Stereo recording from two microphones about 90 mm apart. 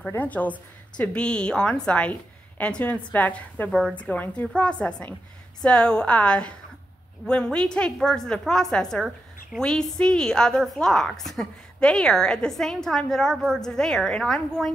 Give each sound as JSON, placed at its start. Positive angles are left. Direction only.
{"t": 0.1, "sound": "a woman's voice", "side_deg": 20}